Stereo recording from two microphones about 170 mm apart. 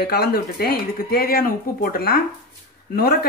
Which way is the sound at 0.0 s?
65° left (ahead or behind).